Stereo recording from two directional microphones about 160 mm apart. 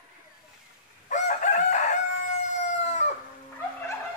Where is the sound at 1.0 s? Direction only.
50° left (ahead or behind).